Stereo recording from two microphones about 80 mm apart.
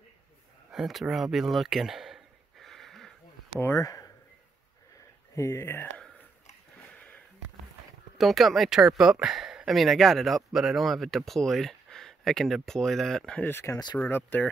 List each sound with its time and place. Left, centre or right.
0.7 s a sound: centre
3.5 s speech: left
3.8 s speech: left
5.3 s speech: left
7.0 s a sound: centre
8.2 s speech: centre
13.4 s speech: left
13.9 s speech: centre